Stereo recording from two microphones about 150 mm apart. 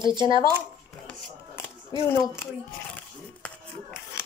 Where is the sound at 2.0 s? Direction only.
15° left (ahead or behind).